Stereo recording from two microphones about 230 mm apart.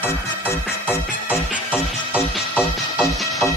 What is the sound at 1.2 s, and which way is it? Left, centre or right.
Music, centre.